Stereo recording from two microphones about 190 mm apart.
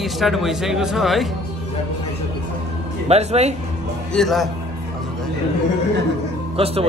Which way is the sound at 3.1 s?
35° right (ahead or behind).